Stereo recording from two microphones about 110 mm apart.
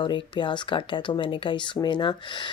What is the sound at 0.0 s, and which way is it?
Speech, 45° left (ahead or behind).